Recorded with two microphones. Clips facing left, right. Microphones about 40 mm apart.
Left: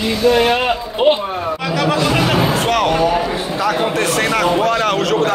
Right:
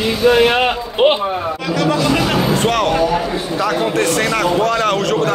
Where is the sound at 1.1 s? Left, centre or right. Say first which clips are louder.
Right 1 dB; centre.